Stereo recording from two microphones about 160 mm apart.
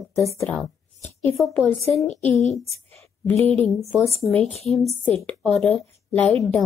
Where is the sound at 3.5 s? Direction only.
Centre (ahead or behind).